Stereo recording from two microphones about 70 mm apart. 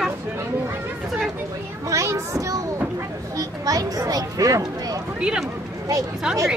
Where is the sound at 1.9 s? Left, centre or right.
Right.